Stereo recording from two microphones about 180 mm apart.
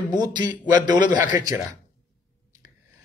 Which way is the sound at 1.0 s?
45° left (ahead or behind).